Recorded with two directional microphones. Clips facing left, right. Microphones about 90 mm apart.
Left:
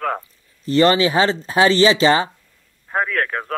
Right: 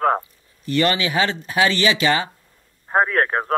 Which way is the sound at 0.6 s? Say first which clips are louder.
Left 5 dB; 30° left (ahead or behind).